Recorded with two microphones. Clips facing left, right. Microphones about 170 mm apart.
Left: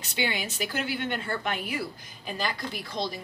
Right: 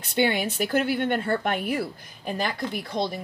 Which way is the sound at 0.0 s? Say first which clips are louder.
Right 7 dB; 55° right (ahead or behind).